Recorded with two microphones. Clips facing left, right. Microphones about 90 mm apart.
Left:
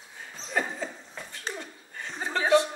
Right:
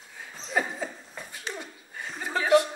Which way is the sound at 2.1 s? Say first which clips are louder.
Left 1 dB; 25° left (ahead or behind).